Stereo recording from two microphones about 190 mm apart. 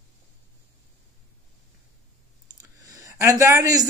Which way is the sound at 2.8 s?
20° right (ahead or behind).